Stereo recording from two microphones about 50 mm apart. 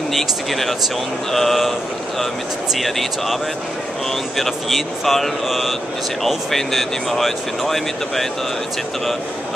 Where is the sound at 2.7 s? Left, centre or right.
Centre.